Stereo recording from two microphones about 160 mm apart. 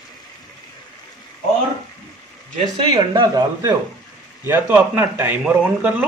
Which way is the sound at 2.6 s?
30° right (ahead or behind).